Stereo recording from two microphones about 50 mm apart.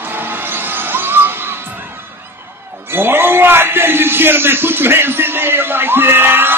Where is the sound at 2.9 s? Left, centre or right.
Right.